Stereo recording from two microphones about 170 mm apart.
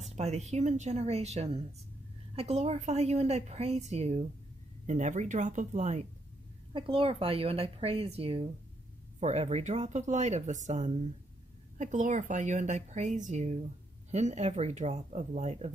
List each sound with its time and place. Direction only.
0.0 s a woman's voice: 40° right (ahead or behind)
6.7 s a woman's voice: 30° right (ahead or behind)